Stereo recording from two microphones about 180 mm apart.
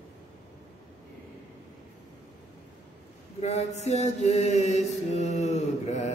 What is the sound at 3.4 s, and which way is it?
Mantra, 40° left (ahead or behind).